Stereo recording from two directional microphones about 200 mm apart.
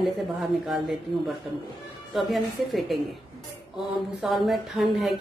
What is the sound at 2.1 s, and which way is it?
Speech, centre (ahead or behind).